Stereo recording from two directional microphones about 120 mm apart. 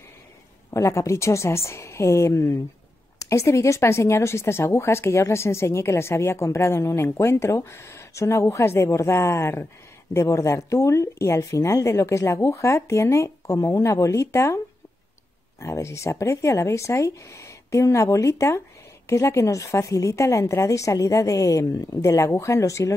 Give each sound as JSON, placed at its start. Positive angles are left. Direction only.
{"t": 0.7, "sound": "speech", "side_deg": 25}
{"t": 15.6, "sound": "speech", "side_deg": 25}